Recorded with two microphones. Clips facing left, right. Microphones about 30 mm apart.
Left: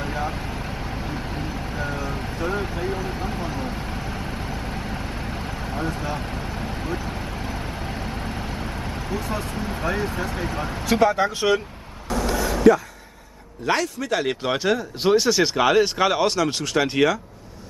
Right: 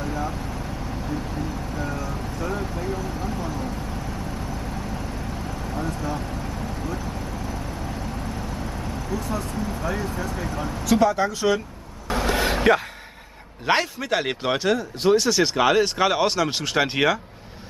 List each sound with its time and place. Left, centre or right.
0.0 s vehicle: left
12.3 s a sound: right
13.7 s speech: right; by 14.9 s centre
15.0 s speech: centre